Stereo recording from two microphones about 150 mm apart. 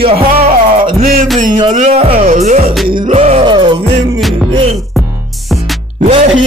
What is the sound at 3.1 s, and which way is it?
Music, 40° right (ahead or behind).